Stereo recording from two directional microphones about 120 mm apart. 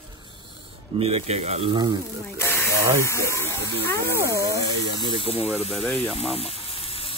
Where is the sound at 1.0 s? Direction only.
55° right (ahead or behind).